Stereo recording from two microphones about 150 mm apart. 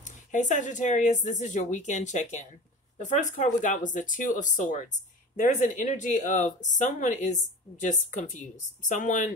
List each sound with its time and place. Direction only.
0.3 s a woman's voice: 55° left (ahead or behind)